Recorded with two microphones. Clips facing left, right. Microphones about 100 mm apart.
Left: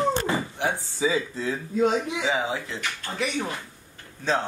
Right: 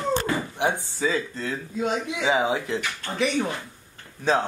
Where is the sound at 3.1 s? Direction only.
Centre (ahead or behind).